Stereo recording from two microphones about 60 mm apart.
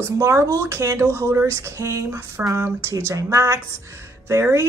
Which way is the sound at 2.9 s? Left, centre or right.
Right.